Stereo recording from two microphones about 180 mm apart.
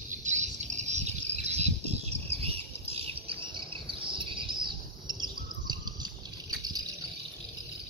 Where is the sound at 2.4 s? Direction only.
35° right (ahead or behind).